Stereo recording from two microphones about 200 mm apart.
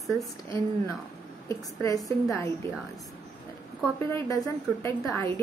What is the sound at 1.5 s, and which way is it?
A woman's voice, 15° left (ahead or behind).